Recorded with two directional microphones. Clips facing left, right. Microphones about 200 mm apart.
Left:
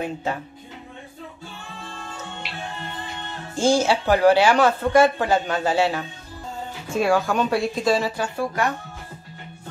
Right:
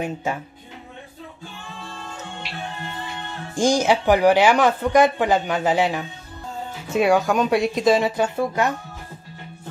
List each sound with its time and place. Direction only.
0.0 s speech: 15° right (ahead or behind)
3.5 s speech: 15° right (ahead or behind)
6.9 s speech: centre (ahead or behind)
7.6 s speech: 20° right (ahead or behind)